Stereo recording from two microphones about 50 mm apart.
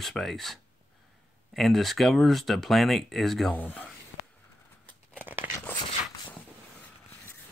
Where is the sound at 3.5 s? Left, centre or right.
Left.